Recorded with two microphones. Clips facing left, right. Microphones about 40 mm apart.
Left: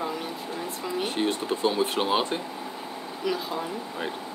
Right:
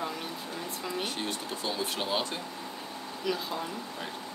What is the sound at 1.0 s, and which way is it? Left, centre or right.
Speech, left.